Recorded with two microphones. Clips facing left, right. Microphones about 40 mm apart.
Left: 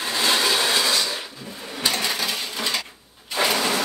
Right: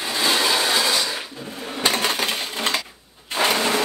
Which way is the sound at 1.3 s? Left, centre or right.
Right.